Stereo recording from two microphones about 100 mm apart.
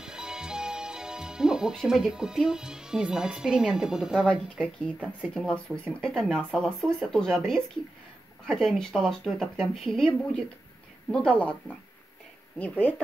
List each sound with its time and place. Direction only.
0.0 s speech: 5° right (ahead or behind)
4.3 s speech: 15° left (ahead or behind)
5.2 s speech: 5° left (ahead or behind)